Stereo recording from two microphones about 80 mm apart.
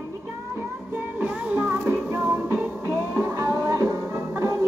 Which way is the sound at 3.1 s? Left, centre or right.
Right.